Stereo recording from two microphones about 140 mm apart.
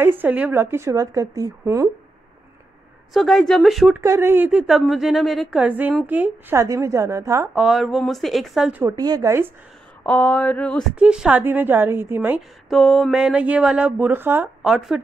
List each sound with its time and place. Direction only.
0.0 s a woman's voice: 15° right (ahead or behind)
3.1 s speech: centre (ahead or behind)
3.9 s a woman's voice: 20° right (ahead or behind)
7.5 s speech: centre (ahead or behind)
8.8 s a woman's voice: 30° right (ahead or behind)
10.0 s a sound: 10° left (ahead or behind)
11.0 s a woman's voice: 5° right (ahead or behind)
12.6 s a woman's voice: centre (ahead or behind)
14.6 s speech: 5° right (ahead or behind)